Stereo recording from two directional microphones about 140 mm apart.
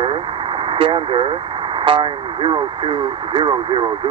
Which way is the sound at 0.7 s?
40° right (ahead or behind).